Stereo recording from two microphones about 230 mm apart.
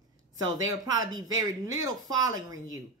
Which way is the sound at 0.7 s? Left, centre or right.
Centre.